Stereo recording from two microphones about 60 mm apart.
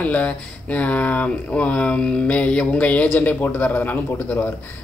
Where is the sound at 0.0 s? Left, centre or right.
Left.